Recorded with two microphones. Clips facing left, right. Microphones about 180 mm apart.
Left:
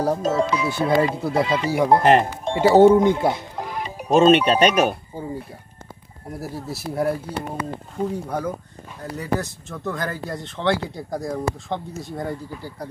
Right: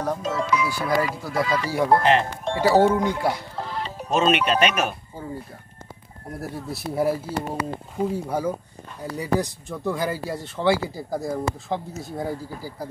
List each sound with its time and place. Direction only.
0.0 s speech: 30° left (ahead or behind)
2.4 s music: 20° left (ahead or behind)
4.1 s speech: 35° left (ahead or behind)
6.3 s speech: centre (ahead or behind)